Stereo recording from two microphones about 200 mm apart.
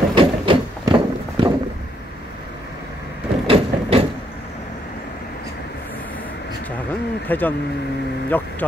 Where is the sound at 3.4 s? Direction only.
30° right (ahead or behind).